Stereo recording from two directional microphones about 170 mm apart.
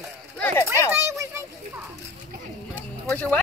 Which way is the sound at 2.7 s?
10° left (ahead or behind).